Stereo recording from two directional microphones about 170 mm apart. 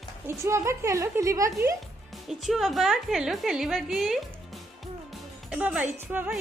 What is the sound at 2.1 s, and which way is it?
A woman's voice, centre (ahead or behind).